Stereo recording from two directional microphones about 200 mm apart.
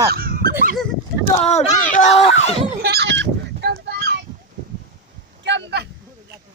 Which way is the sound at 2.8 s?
55° right (ahead or behind).